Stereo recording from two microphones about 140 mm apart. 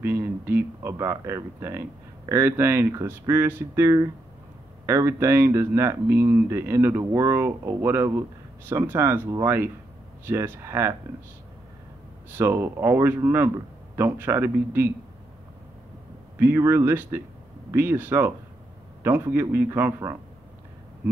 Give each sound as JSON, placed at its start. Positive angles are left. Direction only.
{"t": 0.0, "sound": "speech", "side_deg": -15}
{"t": 12.4, "sound": "speech", "side_deg": -15}
{"t": 16.3, "sound": "speech", "side_deg": -20}